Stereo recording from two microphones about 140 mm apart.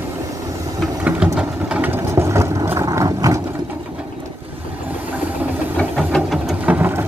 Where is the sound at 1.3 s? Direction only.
10° right (ahead or behind).